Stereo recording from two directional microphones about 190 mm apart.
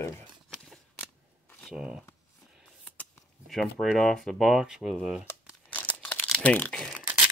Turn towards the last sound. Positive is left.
turn(degrees=5)  # may be behind; listen again after turning